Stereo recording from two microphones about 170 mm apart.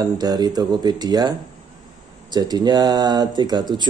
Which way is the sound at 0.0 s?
25° right (ahead or behind).